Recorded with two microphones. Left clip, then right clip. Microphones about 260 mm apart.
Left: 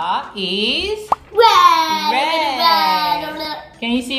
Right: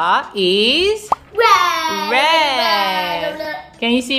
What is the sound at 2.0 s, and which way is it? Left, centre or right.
A woman's voice, centre.